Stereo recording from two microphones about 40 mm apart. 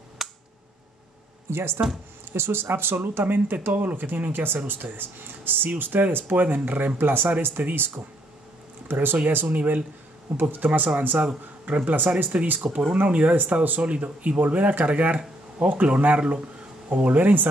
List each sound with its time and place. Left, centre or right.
0.2 s a sound: centre
1.5 s speech: right
3.6 s speech: right
9.5 s speech: right